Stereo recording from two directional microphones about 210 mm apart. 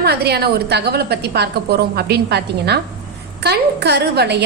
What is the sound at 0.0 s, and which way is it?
A woman's voice, 50° right (ahead or behind).